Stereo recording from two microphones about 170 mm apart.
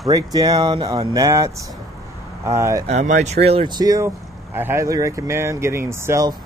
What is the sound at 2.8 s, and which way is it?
Speech, 45° right (ahead or behind).